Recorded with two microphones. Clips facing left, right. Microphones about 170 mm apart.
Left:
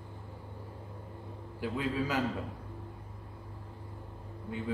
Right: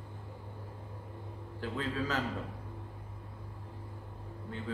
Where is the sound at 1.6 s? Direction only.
10° left (ahead or behind).